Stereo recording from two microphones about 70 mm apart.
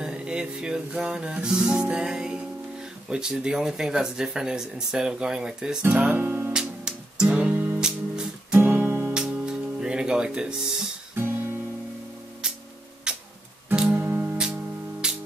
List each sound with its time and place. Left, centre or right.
0.0 s music: centre
3.1 s speech: centre
6.1 s music: right
6.5 s music: centre
7.5 s music: right
7.8 s music: centre
8.5 s guitar: right
9.1 s music: centre
13.1 s music: centre
13.8 s music: right
15.0 s music: centre